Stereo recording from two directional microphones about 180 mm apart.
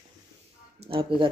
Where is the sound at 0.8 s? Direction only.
30° right (ahead or behind).